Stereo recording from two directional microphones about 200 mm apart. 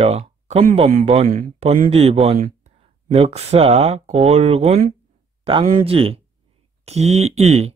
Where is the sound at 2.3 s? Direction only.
45° right (ahead or behind).